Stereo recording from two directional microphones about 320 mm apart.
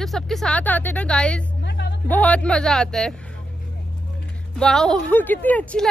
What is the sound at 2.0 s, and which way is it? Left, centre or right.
A woman's voice, centre.